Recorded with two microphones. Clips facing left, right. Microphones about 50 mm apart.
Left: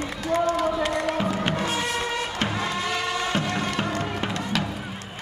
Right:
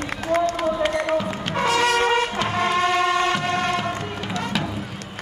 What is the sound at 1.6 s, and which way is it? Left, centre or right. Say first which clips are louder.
Music: right 7 dB; right.